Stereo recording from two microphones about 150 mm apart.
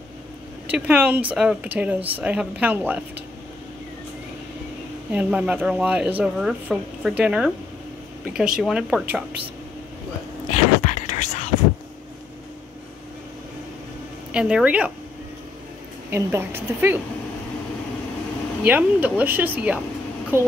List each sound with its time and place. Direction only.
0.7 s speech: 10° right (ahead or behind)
5.1 s speech: 10° right (ahead or behind)
10.5 s whispering: 50° left (ahead or behind)
14.3 s speech: 5° right (ahead or behind)
16.1 s speech: 15° right (ahead or behind)
18.6 s speech: 10° right (ahead or behind)